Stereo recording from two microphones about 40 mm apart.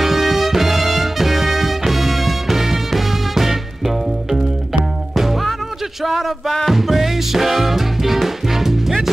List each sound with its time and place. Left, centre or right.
0.0 s music: centre
6.0 s a sound: centre
6.7 s music: centre